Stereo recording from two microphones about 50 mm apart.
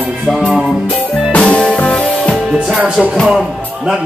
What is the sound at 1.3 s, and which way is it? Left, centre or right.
Music, left.